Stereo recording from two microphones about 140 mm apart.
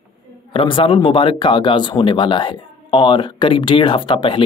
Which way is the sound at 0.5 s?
35° left (ahead or behind).